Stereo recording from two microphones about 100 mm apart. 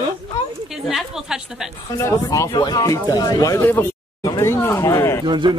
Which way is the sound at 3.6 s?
20° left (ahead or behind).